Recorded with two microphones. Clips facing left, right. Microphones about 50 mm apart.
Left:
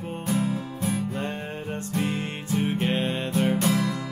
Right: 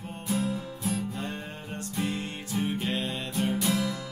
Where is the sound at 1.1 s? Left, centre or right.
Left.